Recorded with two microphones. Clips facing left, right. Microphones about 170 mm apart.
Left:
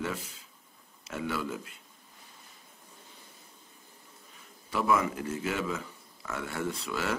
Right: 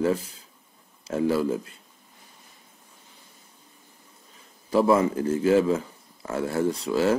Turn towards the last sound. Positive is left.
turn(degrees=-30)  # may be behind; listen again after turning